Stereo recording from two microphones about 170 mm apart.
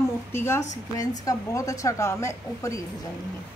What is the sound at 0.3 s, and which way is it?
Speech, 15° left (ahead or behind).